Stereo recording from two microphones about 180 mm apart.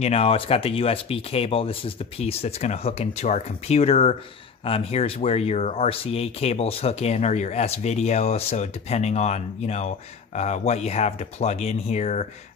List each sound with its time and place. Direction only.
0.0 s speech: 35° left (ahead or behind)